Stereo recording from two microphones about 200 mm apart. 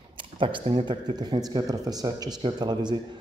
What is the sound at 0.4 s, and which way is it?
A man's voice, 25° right (ahead or behind).